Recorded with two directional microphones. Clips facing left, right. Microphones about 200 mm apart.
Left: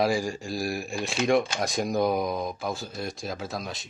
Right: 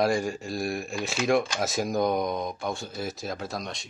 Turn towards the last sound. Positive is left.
turn(degrees=0)  # may be behind; listen again after turning